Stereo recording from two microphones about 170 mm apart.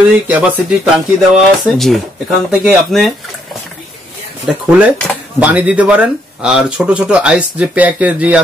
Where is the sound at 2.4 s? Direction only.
Centre (ahead or behind).